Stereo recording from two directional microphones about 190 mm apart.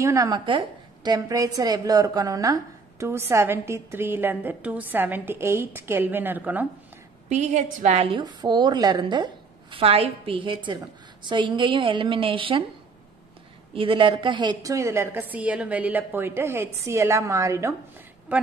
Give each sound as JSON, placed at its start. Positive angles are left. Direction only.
{"t": 0.0, "sound": "a woman's voice", "side_deg": -15}
{"t": 7.2, "sound": "a woman's voice", "side_deg": -40}
{"t": 13.7, "sound": "a woman's voice", "side_deg": -25}